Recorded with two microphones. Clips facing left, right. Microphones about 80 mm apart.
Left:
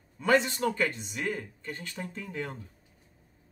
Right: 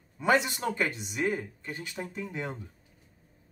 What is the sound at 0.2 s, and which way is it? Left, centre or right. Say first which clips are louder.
Speech: left 1 dB; centre.